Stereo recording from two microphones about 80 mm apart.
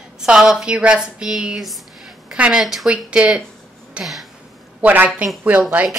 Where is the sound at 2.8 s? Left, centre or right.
Centre.